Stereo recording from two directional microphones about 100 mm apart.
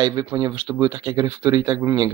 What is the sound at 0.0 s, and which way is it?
Speech, 45° right (ahead or behind).